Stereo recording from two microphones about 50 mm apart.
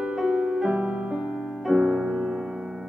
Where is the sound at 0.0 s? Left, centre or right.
Centre.